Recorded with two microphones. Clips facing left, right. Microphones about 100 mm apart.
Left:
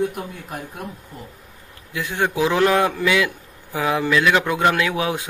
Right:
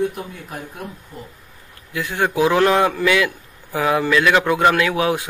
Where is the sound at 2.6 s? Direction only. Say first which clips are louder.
Left 1 dB; 20° right (ahead or behind).